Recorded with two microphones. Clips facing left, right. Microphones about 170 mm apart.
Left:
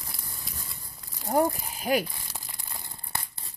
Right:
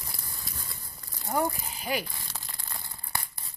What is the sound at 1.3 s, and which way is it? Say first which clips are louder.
Speech: left 4 dB; 45° left (ahead or behind).